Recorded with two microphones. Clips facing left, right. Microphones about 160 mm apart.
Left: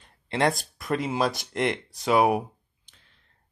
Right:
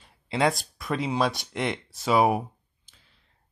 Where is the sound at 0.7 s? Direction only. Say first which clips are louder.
Even; centre (ahead or behind).